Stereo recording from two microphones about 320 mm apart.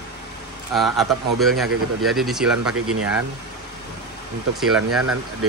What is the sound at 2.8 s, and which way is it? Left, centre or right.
Speech, right.